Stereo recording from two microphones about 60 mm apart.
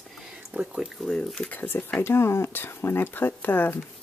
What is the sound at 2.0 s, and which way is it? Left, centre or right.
Speech, left.